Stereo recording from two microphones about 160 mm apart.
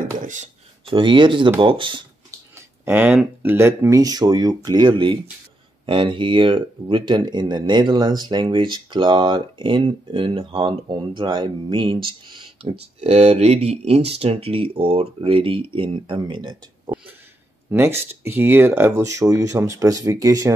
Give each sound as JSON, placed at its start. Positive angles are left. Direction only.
{"t": 0.8, "sound": "speech", "side_deg": -30}
{"t": 2.5, "sound": "speech", "side_deg": -15}
{"t": 13.0, "sound": "speech", "side_deg": -45}
{"t": 17.6, "sound": "speech", "side_deg": -15}